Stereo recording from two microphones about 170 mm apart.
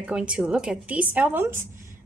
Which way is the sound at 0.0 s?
5° right (ahead or behind).